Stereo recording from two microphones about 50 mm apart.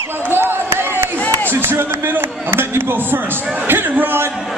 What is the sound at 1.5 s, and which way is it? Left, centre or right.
Speech, right.